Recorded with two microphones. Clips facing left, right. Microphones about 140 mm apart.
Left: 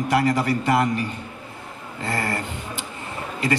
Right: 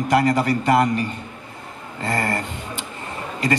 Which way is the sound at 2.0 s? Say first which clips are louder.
Right 3 dB; 40° right (ahead or behind).